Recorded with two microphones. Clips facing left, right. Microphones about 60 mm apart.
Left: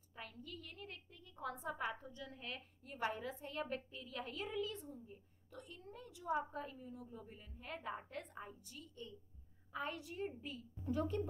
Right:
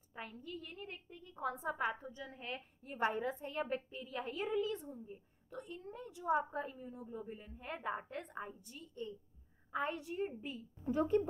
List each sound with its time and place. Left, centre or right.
0.1 s a woman's voice: right